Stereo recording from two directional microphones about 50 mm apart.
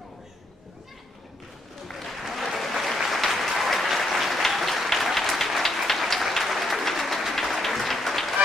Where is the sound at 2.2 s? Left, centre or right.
Centre.